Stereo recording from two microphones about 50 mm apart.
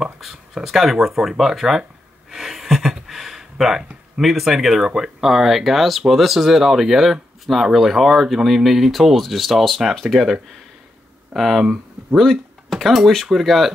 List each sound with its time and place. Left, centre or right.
0.0 s speech: centre
11.3 s speech: centre
11.6 s speech: centre
12.2 s a sound: centre
12.7 s speech: centre